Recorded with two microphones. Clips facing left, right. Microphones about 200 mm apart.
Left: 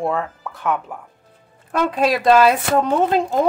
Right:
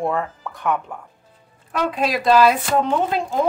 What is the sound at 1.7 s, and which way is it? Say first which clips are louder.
Speech: left 3 dB; 50° left (ahead or behind).